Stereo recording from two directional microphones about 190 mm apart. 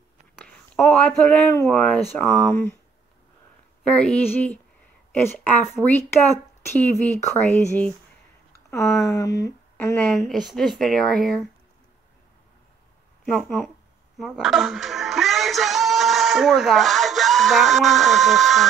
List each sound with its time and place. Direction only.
0.4 s a sound: 5° left (ahead or behind)
1.7 s speech: 5° left (ahead or behind)
3.8 s a woman's voice: 5° left (ahead or behind)
13.2 s speech: 5° left (ahead or behind)